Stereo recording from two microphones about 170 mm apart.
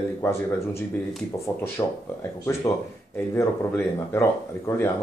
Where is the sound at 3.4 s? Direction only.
15° left (ahead or behind).